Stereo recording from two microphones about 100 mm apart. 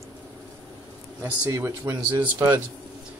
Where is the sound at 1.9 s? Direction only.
40° right (ahead or behind).